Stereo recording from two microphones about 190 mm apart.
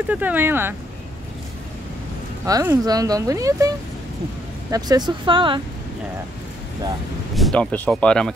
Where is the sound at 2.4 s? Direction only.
15° right (ahead or behind).